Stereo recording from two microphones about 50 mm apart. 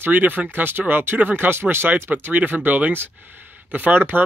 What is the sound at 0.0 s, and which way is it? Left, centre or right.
Speech, right.